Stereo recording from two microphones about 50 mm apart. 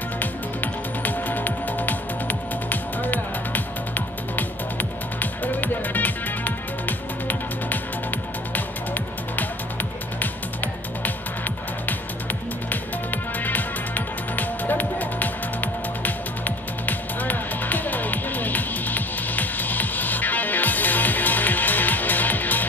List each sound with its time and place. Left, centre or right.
0.2 s music: left
13.1 s music: left